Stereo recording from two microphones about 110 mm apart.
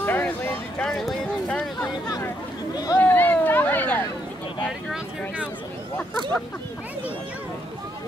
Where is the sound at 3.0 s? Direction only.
15° left (ahead or behind).